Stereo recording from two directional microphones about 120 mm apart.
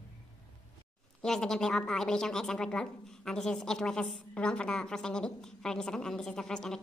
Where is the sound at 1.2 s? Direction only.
5° left (ahead or behind).